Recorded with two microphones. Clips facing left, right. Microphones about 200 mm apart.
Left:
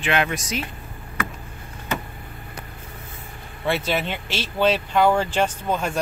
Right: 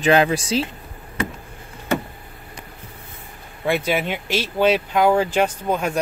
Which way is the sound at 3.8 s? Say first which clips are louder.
Right 3 dB; 10° right (ahead or behind).